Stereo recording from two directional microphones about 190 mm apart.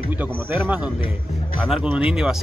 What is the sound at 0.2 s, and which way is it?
Speech, 10° right (ahead or behind).